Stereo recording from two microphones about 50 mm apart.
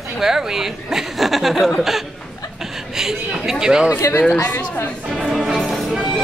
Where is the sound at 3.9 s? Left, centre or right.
Left.